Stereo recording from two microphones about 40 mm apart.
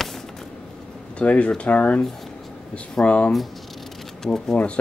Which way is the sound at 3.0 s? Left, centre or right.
Left.